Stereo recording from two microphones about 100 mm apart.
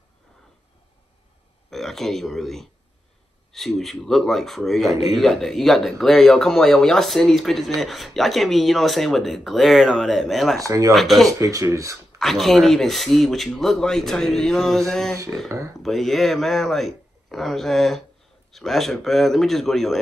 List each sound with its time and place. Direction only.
1.7 s speech: 5° left (ahead or behind)
10.6 s speech: 35° right (ahead or behind)
10.9 s speech: centre (ahead or behind)
11.2 s speech: 35° right (ahead or behind)
12.2 s speech: centre (ahead or behind)
15.4 s speech: 30° right (ahead or behind)
15.8 s speech: centre (ahead or behind)